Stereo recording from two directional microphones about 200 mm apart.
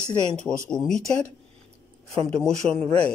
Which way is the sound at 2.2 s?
5° left (ahead or behind).